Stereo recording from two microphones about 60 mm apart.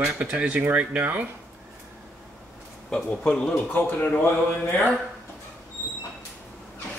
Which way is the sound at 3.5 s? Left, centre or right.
Left.